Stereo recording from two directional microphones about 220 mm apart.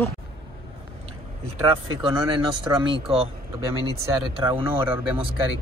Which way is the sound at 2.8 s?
25° right (ahead or behind).